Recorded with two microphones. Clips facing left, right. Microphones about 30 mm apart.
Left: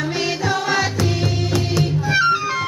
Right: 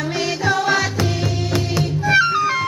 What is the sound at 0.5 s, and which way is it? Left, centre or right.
Music, centre.